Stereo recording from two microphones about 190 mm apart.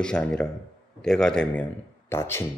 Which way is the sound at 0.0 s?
5° left (ahead or behind).